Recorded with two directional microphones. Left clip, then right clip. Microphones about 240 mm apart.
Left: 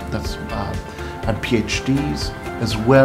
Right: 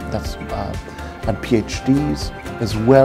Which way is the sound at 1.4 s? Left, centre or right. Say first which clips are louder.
Right 1 dB; right.